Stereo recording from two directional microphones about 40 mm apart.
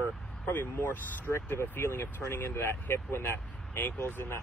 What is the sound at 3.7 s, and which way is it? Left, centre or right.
Speech, left.